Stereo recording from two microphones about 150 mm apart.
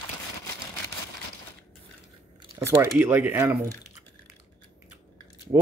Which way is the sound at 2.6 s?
15° right (ahead or behind).